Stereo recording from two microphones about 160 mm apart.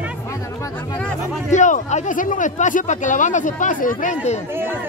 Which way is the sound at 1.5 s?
50° left (ahead or behind).